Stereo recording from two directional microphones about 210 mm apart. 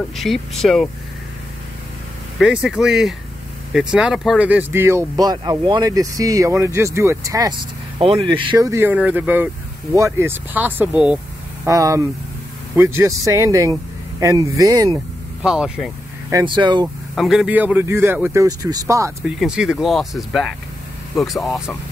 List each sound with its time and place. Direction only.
0.1 s speech: centre (ahead or behind)
2.3 s speech: 5° right (ahead or behind)
15.4 s speech: 5° right (ahead or behind)
16.3 s speech: 20° right (ahead or behind)
17.1 s speech: centre (ahead or behind)
19.2 s speech: 5° right (ahead or behind)